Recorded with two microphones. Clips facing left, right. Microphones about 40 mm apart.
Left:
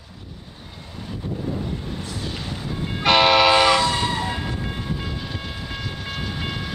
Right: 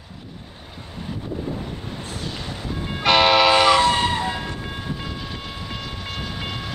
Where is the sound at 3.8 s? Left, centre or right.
Right.